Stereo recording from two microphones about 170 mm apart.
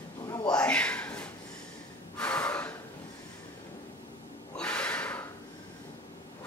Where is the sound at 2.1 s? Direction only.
5° left (ahead or behind).